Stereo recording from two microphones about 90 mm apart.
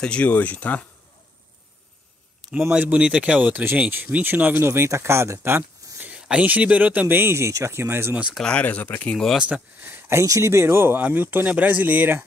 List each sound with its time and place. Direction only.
0.0 s speech: 15° left (ahead or behind)
2.4 s a sound: 5° left (ahead or behind)
2.8 s speech: 15° right (ahead or behind)
5.9 s a sound: 15° right (ahead or behind)
6.2 s speech: 15° right (ahead or behind)
8.4 s speech: 10° left (ahead or behind)
9.1 s speech: 5° left (ahead or behind)
9.4 s speech: 15° right (ahead or behind)
10.0 s speech: 35° right (ahead or behind)